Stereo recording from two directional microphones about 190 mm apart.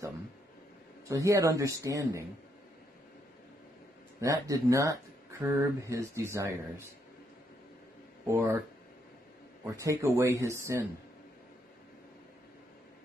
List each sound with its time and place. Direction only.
1.0 s speech: 15° right (ahead or behind)
4.2 s speech: 15° right (ahead or behind)
8.3 s speech: 15° right (ahead or behind)
9.8 s speech: 15° right (ahead or behind)